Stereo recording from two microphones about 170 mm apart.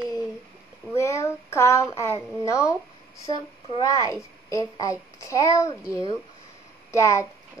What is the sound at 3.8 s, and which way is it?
A child's voice, 20° left (ahead or behind).